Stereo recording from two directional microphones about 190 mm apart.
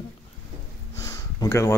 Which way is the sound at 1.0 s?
15° left (ahead or behind).